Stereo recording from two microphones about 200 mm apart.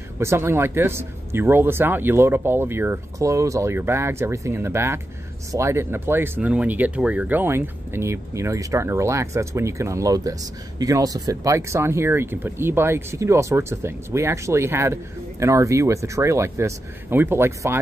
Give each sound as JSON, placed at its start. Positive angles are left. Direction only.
{"t": 0.2, "sound": "speech", "side_deg": -15}